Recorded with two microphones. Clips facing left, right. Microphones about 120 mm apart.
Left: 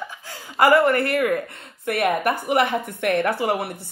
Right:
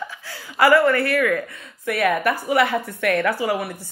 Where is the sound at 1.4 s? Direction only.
60° left (ahead or behind).